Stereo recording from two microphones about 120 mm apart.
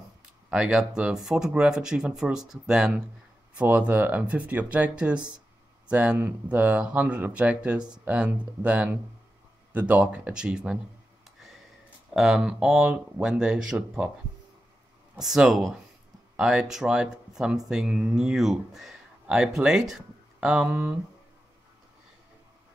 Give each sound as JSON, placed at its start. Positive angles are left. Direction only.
{"t": 0.5, "sound": "speech", "side_deg": -5}
{"t": 11.3, "sound": "a sound", "side_deg": 0}
{"t": 12.1, "sound": "speech", "side_deg": -5}
{"t": 15.2, "sound": "speech", "side_deg": -5}